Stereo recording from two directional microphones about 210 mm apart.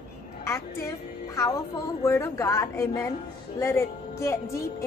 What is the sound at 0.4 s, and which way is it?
A woman's voice, 15° left (ahead or behind).